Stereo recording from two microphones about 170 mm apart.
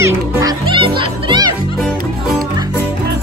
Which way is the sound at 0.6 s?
30° right (ahead or behind).